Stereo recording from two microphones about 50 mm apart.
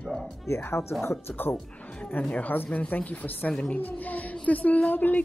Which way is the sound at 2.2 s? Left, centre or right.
Left.